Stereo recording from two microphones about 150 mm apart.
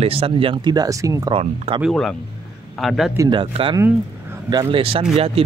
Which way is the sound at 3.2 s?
35° right (ahead or behind).